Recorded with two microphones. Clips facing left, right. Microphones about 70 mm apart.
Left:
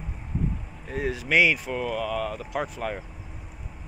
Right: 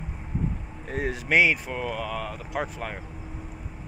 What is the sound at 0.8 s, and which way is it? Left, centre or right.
Speech, right.